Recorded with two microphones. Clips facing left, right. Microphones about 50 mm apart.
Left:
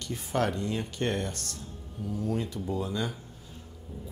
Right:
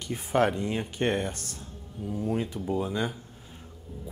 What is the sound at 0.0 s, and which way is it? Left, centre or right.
Speech, right.